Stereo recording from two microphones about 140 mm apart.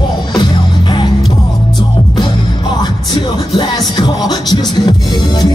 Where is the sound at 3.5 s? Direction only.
35° left (ahead or behind).